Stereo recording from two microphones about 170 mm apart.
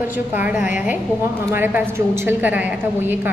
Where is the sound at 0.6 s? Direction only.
50° left (ahead or behind).